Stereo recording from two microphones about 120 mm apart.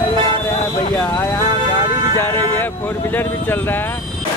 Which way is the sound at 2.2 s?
20° left (ahead or behind).